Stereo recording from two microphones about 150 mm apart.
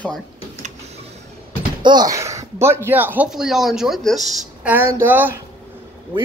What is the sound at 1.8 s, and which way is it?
Speech, 25° right (ahead or behind).